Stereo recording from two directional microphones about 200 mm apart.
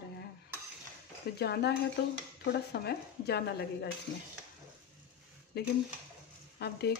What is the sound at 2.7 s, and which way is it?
Speech, 50° left (ahead or behind).